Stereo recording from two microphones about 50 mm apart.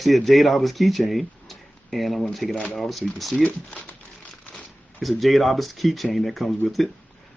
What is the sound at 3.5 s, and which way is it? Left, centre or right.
Speech, left.